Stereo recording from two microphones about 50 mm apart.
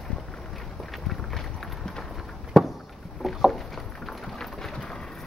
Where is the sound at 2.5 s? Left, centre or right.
Centre.